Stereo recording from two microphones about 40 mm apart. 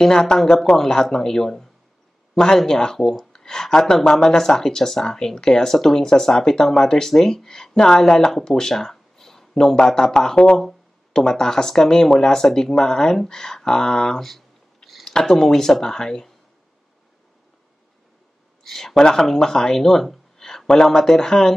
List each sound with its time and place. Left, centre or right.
0.0 s speech: centre
8.5 s a sound: centre
9.8 s speech: centre
18.6 s speech: centre